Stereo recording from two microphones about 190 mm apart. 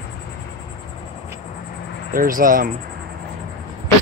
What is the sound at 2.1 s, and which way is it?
Speech, 45° right (ahead or behind).